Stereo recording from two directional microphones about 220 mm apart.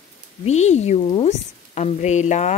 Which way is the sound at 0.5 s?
30° left (ahead or behind).